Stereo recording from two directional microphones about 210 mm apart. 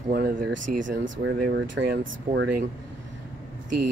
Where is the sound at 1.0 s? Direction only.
60° right (ahead or behind).